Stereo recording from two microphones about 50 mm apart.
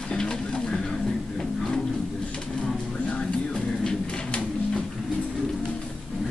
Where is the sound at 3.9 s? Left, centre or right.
Centre.